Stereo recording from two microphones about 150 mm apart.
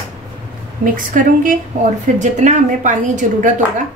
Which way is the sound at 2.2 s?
50° right (ahead or behind).